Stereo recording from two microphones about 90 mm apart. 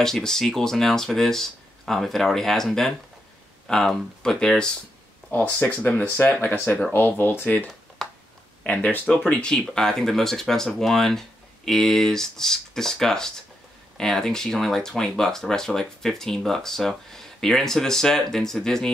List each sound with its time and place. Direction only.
0.0 s speech: 5° left (ahead or behind)
5.3 s speech: 20° left (ahead or behind)
8.0 s a sound: 5° left (ahead or behind)
8.6 s speech: 15° left (ahead or behind)